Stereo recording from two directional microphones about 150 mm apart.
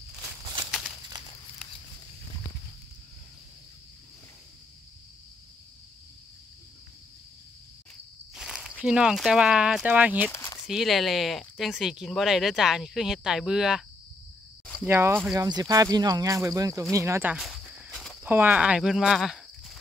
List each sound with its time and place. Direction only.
8.4 s snake: 5° right (ahead or behind)
8.8 s speech: 5° right (ahead or behind)
10.3 s a sound: 20° left (ahead or behind)
10.7 s speech: centre (ahead or behind)
14.9 s speech: 15° right (ahead or behind)
17.4 s cricket: 5° right (ahead or behind)
18.2 s speech: 10° right (ahead or behind)